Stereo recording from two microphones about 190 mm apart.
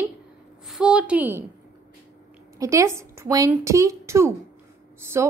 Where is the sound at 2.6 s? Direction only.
15° right (ahead or behind).